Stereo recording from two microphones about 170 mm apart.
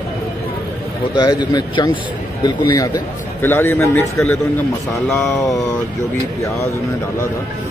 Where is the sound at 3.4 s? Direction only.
15° left (ahead or behind).